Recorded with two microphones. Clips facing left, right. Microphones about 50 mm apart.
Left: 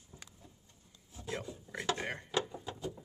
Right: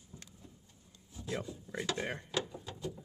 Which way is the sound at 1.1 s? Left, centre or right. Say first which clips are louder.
Right 1 dB; centre.